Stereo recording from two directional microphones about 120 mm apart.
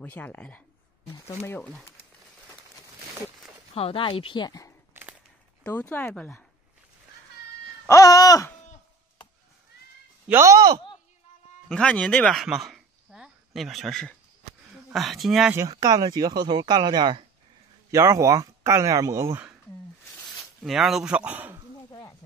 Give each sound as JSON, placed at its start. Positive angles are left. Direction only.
{"t": 0.0, "sound": "speech", "side_deg": 15}
{"t": 3.7, "sound": "speech", "side_deg": 50}
{"t": 4.9, "sound": "a sound", "side_deg": -20}
{"t": 5.6, "sound": "speech", "side_deg": 15}
{"t": 7.9, "sound": "a sound", "side_deg": 30}
{"t": 10.3, "sound": "speech", "side_deg": -25}
{"t": 11.7, "sound": "speech", "side_deg": 5}
{"t": 15.5, "sound": "speech", "side_deg": -30}
{"t": 17.9, "sound": "speech", "side_deg": -25}
{"t": 20.6, "sound": "speech", "side_deg": 0}